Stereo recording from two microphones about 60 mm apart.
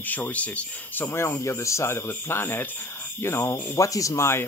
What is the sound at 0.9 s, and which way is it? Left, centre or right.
Speech, left.